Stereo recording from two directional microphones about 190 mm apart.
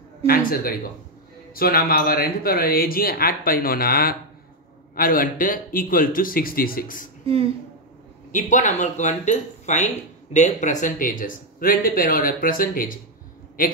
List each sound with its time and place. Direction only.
0.3 s speech: 50° left (ahead or behind)
7.2 s speech: 30° right (ahead or behind)
8.3 s speech: 40° left (ahead or behind)